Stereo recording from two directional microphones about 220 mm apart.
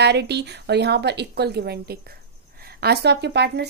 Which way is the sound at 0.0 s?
50° right (ahead or behind).